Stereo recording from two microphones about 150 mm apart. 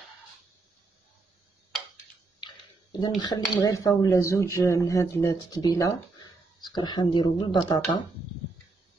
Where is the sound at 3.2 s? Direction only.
25° left (ahead or behind).